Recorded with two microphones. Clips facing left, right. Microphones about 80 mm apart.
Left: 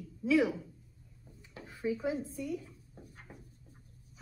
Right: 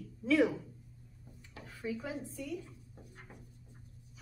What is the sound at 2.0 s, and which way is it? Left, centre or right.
Speech, centre.